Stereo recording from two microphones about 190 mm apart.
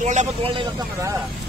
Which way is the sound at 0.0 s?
40° right (ahead or behind).